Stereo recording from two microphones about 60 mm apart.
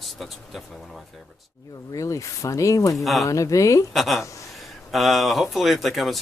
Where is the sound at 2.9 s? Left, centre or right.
Centre.